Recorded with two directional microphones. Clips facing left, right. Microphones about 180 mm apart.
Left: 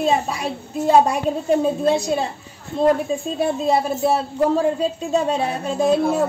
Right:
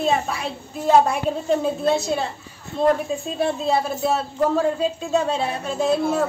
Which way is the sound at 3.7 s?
15° left (ahead or behind).